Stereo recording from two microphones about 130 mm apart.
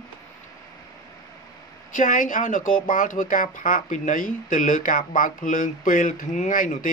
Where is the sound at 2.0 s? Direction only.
90° left.